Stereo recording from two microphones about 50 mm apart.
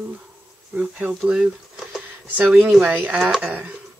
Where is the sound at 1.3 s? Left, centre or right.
Centre.